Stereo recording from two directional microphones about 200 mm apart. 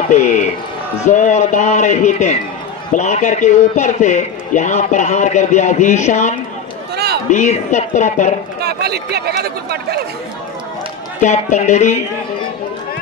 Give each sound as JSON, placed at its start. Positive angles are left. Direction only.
{"t": 0.1, "sound": "a man's voice", "side_deg": 35}
{"t": 8.5, "sound": "speech", "side_deg": -55}
{"t": 11.1, "sound": "a man's voice", "side_deg": 35}